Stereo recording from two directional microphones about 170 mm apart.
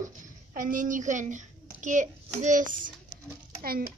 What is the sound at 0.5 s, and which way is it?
A child's voice, 55° right (ahead or behind).